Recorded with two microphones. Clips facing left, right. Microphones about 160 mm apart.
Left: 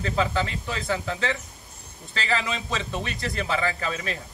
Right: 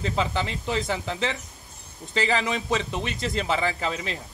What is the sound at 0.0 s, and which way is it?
A man's voice, 20° right (ahead or behind).